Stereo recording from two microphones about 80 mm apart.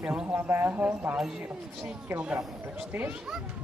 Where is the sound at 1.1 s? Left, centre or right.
Centre.